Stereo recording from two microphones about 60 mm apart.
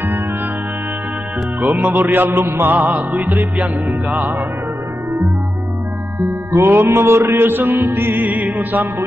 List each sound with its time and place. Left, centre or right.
1.8 s music: centre
2.0 s music: right
6.5 s mantra: right
7.2 s music: right